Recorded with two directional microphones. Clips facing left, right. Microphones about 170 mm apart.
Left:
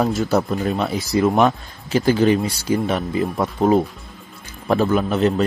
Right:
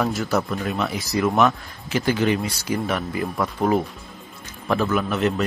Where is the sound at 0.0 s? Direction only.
25° left (ahead or behind).